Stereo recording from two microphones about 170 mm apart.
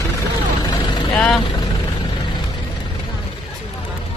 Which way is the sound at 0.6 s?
30° left (ahead or behind).